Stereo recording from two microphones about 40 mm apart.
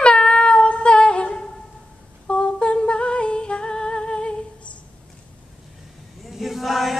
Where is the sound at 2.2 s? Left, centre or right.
Left.